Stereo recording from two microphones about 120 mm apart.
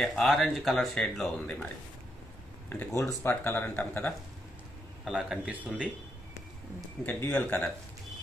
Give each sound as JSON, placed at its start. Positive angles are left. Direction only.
{"t": 0.0, "sound": "speech", "side_deg": 5}
{"t": 3.0, "sound": "speech", "side_deg": 25}
{"t": 5.0, "sound": "a man's voice", "side_deg": -5}
{"t": 7.1, "sound": "speech", "side_deg": 15}